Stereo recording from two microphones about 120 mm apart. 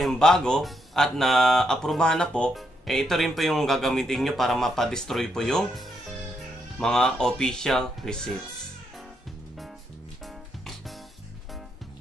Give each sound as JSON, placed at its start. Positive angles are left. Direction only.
{"t": 0.0, "sound": "speech", "side_deg": 5}
{"t": 10.2, "sound": "music", "side_deg": 0}